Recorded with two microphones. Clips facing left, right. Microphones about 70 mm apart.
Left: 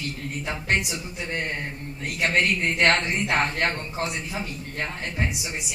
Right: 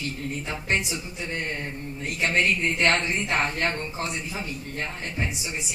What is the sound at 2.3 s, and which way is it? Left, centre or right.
Speech, left.